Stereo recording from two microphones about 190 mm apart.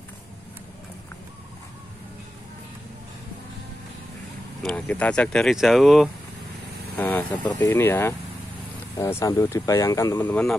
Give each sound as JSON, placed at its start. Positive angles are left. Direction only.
{"t": 4.6, "sound": "speech", "side_deg": 5}
{"t": 7.4, "sound": "speech", "side_deg": 20}